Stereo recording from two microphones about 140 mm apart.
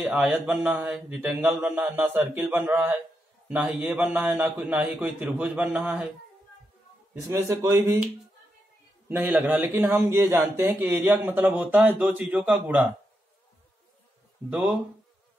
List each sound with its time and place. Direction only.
0.0 s a man's voice: 5° right (ahead or behind)
7.2 s speech: 20° right (ahead or behind)
9.3 s a man's voice: 10° right (ahead or behind)
10.0 s a man's voice: 20° right (ahead or behind); by 12.8 s 5° right (ahead or behind)
14.5 s a man's voice: 5° right (ahead or behind)